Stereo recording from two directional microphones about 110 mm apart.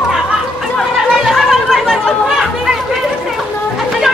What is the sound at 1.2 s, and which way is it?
Chatter, centre (ahead or behind).